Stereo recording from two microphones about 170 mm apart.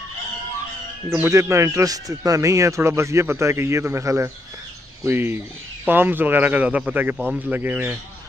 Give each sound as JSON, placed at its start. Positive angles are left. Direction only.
{"t": 1.1, "sound": "speech", "side_deg": -15}